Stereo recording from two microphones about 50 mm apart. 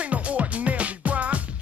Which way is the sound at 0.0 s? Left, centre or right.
Right.